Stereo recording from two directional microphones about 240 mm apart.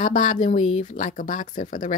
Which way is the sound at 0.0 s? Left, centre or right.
Left.